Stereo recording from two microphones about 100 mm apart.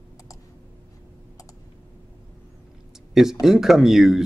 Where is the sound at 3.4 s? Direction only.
5° right (ahead or behind).